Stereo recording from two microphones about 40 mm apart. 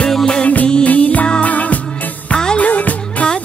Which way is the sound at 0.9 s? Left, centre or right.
Left.